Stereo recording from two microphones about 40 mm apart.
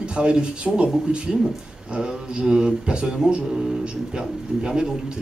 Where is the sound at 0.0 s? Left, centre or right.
Right.